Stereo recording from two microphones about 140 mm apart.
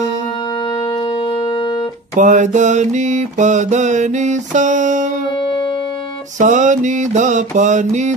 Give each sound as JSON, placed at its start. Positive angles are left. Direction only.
{"t": 1.2, "sound": "music", "side_deg": 35}
{"t": 2.1, "sound": "mantra", "side_deg": -60}
{"t": 5.4, "sound": "music", "side_deg": 35}
{"t": 6.3, "sound": "mantra", "side_deg": -60}